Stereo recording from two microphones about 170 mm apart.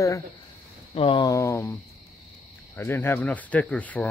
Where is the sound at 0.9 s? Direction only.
30° left (ahead or behind).